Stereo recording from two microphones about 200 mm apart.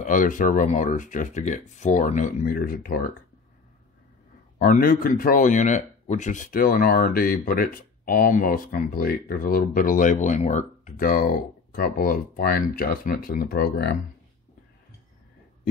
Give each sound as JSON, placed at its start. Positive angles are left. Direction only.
{"t": 0.0, "sound": "speech", "side_deg": 40}
{"t": 4.6, "sound": "a man's voice", "side_deg": 45}